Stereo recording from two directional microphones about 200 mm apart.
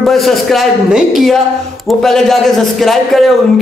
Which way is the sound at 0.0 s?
Centre (ahead or behind).